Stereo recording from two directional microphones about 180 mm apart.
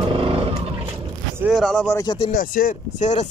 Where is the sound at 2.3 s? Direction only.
50° left (ahead or behind).